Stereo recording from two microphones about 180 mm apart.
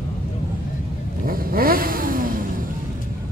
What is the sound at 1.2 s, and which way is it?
Vehicle, 55° right (ahead or behind).